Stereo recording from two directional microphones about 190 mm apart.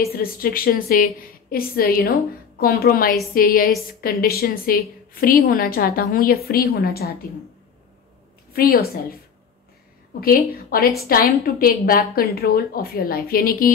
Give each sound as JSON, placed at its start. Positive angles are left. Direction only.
{"t": 0.0, "sound": "a woman's voice", "side_deg": 50}
{"t": 8.5, "sound": "a woman's voice", "side_deg": 55}
{"t": 10.2, "sound": "a woman's voice", "side_deg": 50}